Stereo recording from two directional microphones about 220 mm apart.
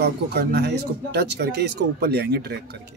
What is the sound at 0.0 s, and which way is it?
Speech, 50° right (ahead or behind).